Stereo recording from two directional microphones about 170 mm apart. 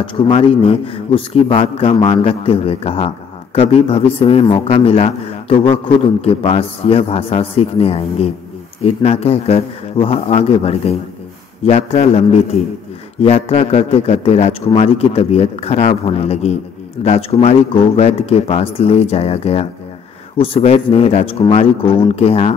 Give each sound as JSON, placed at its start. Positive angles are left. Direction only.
{"t": 0.0, "sound": "speech", "side_deg": 30}